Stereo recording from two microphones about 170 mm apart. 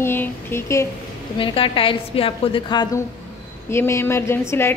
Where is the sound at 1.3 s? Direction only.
30° left (ahead or behind).